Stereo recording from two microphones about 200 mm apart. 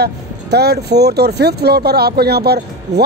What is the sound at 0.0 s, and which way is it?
Speech, 55° right (ahead or behind).